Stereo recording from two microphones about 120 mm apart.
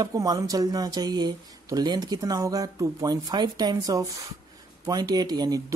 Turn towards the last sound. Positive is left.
turn(degrees=-35)  # may be behind; listen again after turning